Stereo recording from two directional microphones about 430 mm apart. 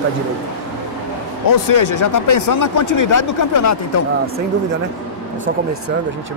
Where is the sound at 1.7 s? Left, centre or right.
Left.